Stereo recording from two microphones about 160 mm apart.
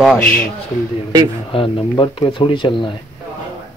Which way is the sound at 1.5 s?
35° left (ahead or behind).